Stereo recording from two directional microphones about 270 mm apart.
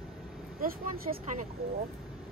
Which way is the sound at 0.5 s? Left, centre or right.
Right.